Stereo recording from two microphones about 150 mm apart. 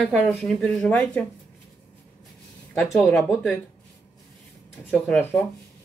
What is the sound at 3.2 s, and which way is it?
Speech, centre (ahead or behind).